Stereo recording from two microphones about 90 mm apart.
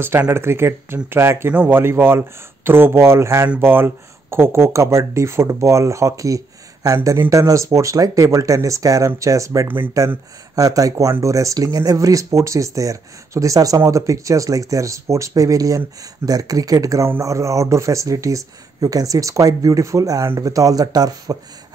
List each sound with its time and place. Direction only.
0.3 s speech: 30° right (ahead or behind); by 21.4 s 45° right (ahead or behind)